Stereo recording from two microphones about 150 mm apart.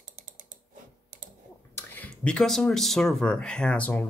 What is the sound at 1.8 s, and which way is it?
Speech, 10° left (ahead or behind).